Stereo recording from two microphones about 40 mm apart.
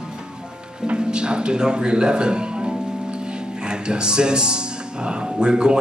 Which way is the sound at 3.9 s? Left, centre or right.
Right.